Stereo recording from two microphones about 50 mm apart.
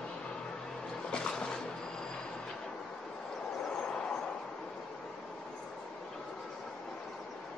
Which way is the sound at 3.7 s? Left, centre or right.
Centre.